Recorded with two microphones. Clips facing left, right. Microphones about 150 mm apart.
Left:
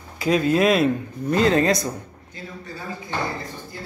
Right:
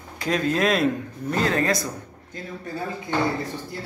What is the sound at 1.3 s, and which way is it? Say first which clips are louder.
Speech: left 4 dB; 20° left (ahead or behind).